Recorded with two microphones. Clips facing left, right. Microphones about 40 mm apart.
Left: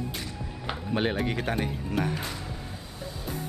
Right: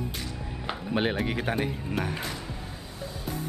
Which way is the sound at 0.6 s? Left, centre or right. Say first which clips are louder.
Even; centre.